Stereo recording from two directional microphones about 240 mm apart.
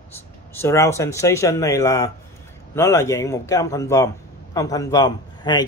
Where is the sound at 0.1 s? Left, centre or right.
Centre.